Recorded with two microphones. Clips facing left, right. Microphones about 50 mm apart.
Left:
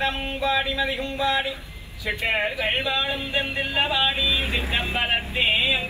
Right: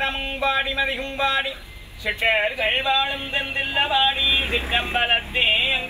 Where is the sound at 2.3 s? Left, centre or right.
Right.